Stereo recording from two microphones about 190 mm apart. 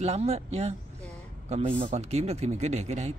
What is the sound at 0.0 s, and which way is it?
Speech, 35° right (ahead or behind).